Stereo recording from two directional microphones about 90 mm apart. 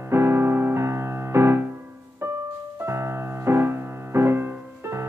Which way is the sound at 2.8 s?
30° right (ahead or behind).